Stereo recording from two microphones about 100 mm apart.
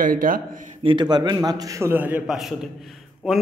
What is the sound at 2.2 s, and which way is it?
Speech, 5° right (ahead or behind).